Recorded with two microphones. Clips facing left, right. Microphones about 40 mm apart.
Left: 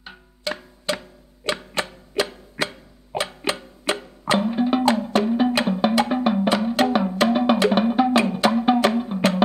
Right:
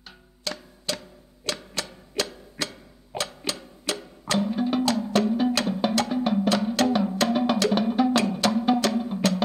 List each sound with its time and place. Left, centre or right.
0.0 s music: left